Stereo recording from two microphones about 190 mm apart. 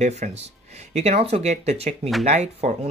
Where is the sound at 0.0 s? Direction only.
35° right (ahead or behind).